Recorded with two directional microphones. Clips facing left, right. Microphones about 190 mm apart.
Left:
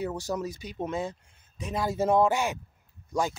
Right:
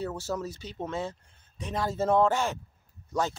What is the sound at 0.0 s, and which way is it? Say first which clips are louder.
Speech: left 2 dB; 15° left (ahead or behind).